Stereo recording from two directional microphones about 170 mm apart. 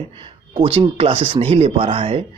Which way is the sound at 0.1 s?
30° right (ahead or behind).